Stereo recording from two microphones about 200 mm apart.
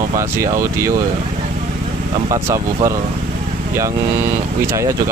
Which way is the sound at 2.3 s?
15° right (ahead or behind).